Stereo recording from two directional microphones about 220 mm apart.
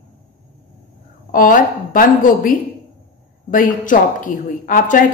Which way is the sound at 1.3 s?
40° left (ahead or behind).